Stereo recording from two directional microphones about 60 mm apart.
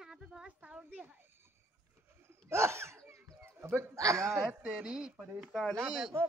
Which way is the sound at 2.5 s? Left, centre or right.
Right.